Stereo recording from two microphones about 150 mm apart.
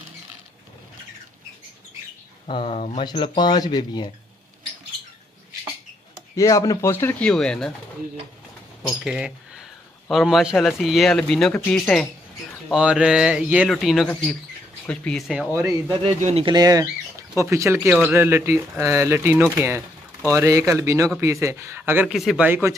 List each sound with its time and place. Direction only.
2.4 s speech: 40° left (ahead or behind)
3.0 s speech: 30° left (ahead or behind)
6.3 s speech: 20° left (ahead or behind); by 7.7 s 5° left (ahead or behind)
8.8 s a man's voice: 5° right (ahead or behind)
16.2 s speech: 50° right (ahead or behind)
16.4 s speech: 25° right (ahead or behind)
17.8 s a man's voice: 5° right (ahead or behind)
18.1 s speech: 15° right (ahead or behind)
22.0 s a man's voice: centre (ahead or behind)
22.5 s speech: 15° right (ahead or behind)